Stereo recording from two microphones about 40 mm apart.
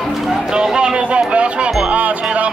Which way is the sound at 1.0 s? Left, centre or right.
Right.